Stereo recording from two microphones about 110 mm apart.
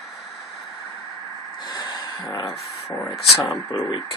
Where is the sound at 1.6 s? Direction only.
35° left (ahead or behind).